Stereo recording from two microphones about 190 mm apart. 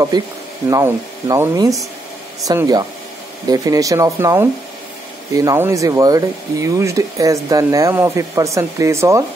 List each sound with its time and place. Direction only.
0.1 s speech: 20° right (ahead or behind)